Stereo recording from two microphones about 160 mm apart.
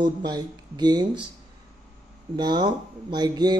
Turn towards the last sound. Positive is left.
turn(degrees=-25)  # may be behind; listen again after turning